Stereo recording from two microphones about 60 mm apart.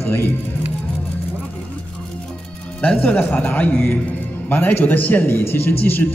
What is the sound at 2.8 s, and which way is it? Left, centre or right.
A man's voice, left.